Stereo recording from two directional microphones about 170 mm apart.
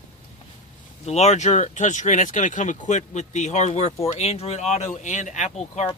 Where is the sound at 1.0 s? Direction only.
40° left (ahead or behind).